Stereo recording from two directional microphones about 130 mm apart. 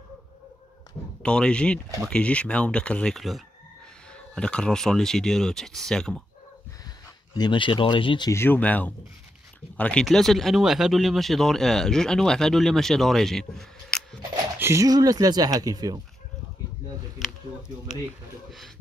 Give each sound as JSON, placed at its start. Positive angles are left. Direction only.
{"t": 1.2, "sound": "speech", "side_deg": 5}
{"t": 7.3, "sound": "speech", "side_deg": 35}
{"t": 8.3, "sound": "speech", "side_deg": 15}
{"t": 14.6, "sound": "speech", "side_deg": -25}
{"t": 17.2, "sound": "a sound", "side_deg": 0}